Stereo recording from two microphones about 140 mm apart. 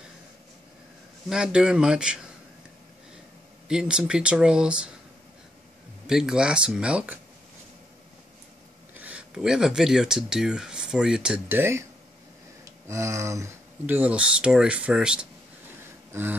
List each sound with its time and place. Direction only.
1.3 s speech: 5° right (ahead or behind)
3.6 s speech: 5° right (ahead or behind)
6.0 s speech: 5° right (ahead or behind)
8.9 s speech: 10° right (ahead or behind)
12.8 s speech: 20° right (ahead or behind)
16.1 s a sound: 15° right (ahead or behind)